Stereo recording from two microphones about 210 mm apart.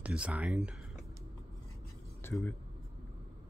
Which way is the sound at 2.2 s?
10° left (ahead or behind).